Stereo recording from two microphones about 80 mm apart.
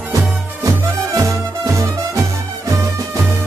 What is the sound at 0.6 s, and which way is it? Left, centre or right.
Music, right.